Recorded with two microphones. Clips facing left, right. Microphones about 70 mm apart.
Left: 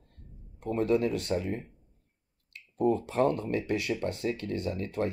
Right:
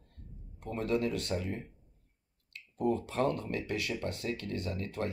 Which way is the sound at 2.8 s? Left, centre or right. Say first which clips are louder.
Left 4 dB; left.